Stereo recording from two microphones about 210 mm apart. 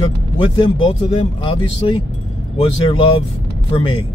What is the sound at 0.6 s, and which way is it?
Speech, 20° left (ahead or behind).